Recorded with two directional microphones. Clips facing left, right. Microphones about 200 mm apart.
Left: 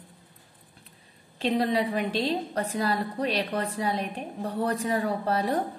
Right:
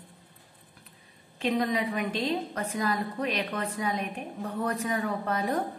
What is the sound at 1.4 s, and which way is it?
A woman's voice, 30° left (ahead or behind).